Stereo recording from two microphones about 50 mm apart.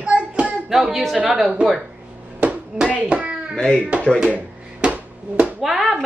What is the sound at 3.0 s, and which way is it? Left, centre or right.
Speech, right.